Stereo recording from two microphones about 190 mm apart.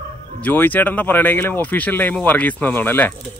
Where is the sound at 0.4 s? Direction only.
10° left (ahead or behind).